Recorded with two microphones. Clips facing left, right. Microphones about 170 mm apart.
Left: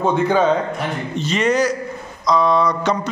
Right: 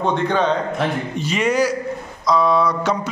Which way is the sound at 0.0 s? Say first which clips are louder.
Left 3 dB; 5° left (ahead or behind).